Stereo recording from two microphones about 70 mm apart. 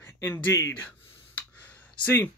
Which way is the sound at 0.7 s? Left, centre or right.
Left.